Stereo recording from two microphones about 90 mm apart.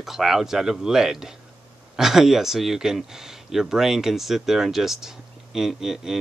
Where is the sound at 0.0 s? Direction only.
5° right (ahead or behind).